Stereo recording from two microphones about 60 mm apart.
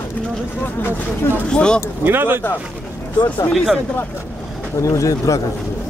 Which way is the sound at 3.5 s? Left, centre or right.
Centre.